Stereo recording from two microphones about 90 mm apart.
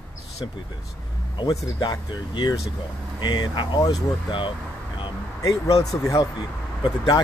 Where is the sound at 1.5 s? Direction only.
50° left (ahead or behind).